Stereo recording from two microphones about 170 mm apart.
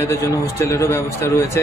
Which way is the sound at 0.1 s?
15° left (ahead or behind).